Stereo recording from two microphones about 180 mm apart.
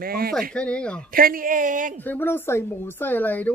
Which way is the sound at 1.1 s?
55° right (ahead or behind).